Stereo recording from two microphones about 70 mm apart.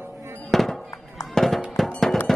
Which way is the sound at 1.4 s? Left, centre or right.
Centre.